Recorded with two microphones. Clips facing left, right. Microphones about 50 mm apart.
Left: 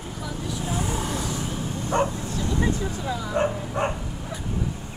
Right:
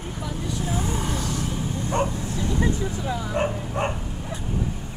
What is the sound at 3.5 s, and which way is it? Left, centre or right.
Dog, centre.